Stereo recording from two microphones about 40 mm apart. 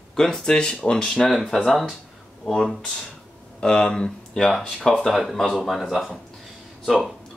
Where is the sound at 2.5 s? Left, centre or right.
Centre.